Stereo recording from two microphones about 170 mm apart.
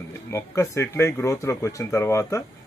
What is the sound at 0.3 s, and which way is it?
Speech, 15° left (ahead or behind).